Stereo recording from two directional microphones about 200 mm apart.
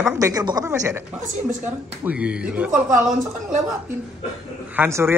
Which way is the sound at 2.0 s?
5° right (ahead or behind).